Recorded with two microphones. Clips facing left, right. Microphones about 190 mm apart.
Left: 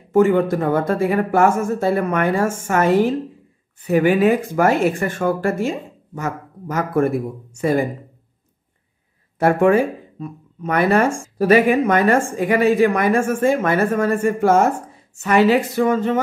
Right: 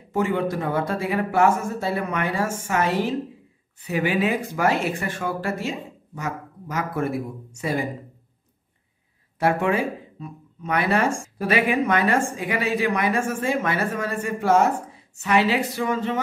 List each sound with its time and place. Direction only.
0.1 s speech: 50° left (ahead or behind)
9.4 s speech: 50° left (ahead or behind)